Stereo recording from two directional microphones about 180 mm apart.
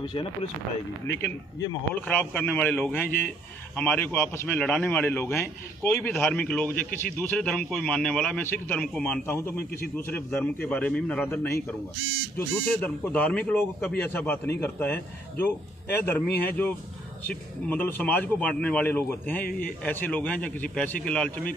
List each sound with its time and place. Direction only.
0.0 s speech: 25° left (ahead or behind)
2.0 s a man's voice: 10° left (ahead or behind)